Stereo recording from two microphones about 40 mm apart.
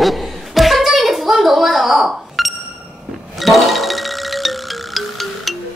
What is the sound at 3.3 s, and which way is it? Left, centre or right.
Music, centre.